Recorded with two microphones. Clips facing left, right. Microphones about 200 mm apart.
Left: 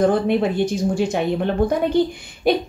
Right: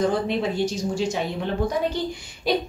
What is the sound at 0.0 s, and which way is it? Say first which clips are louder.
A woman's voice: left 5 dB; 55° left (ahead or behind).